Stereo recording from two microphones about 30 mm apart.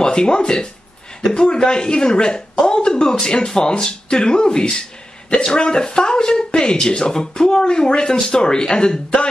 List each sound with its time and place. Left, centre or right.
0.0 s speech: left